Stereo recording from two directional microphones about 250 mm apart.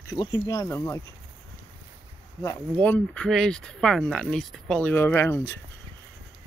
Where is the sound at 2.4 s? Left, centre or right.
Centre.